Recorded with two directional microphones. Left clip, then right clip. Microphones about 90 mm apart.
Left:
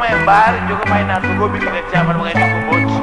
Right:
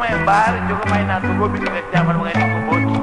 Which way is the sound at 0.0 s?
25° right (ahead or behind).